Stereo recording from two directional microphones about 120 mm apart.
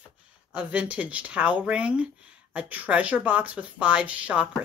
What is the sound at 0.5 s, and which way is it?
Speech, 10° right (ahead or behind).